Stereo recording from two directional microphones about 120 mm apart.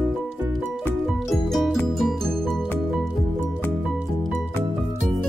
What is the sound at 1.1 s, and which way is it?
Music, centre (ahead or behind).